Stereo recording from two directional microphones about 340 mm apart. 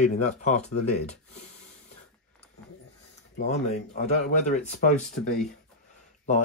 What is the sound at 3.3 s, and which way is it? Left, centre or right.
Speech, left.